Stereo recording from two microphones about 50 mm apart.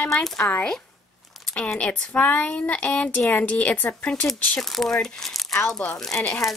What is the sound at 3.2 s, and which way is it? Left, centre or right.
Speech, left.